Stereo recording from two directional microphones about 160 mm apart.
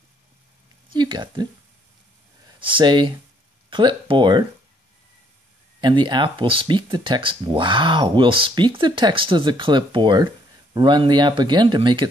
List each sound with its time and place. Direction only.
0.9 s speech: 30° right (ahead or behind)
5.8 s speech: 30° right (ahead or behind)